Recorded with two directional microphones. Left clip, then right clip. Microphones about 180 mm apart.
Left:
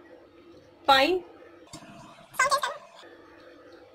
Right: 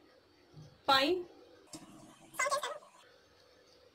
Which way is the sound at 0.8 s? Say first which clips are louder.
Left 8 dB; 15° left (ahead or behind).